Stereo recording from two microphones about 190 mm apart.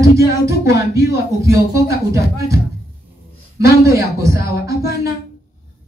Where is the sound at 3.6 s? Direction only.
15° right (ahead or behind).